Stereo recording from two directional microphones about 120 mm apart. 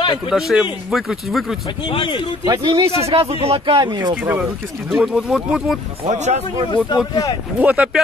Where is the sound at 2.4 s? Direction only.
35° right (ahead or behind).